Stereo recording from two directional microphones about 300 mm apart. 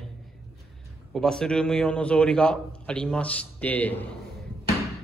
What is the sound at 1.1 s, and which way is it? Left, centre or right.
A man's voice, centre.